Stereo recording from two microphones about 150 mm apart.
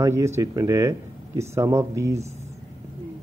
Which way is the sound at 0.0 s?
20° right (ahead or behind).